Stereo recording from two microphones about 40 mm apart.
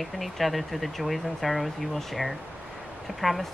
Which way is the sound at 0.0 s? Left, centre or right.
Centre.